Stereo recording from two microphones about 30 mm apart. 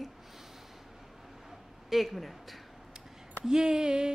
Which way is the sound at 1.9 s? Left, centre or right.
Centre.